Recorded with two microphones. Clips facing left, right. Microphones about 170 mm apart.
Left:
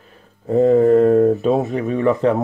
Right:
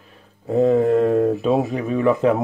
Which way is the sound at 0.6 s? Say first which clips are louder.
Left 5 dB; 40° left (ahead or behind).